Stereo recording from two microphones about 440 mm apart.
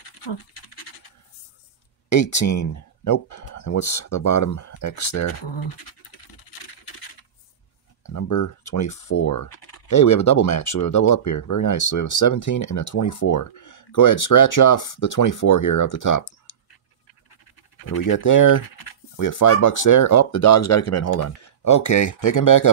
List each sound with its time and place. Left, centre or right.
0.3 s scratch: left
2.0 s speech: left
6.6 s scratch: left
8.0 s speech: left
17.3 s pant: left
18.1 s speech: left